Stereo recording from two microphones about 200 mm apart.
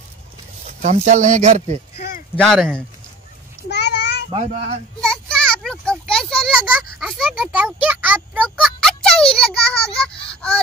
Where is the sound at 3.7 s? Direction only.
60° left (ahead or behind).